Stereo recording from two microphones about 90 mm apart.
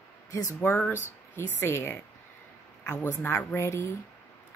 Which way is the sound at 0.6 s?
20° left (ahead or behind).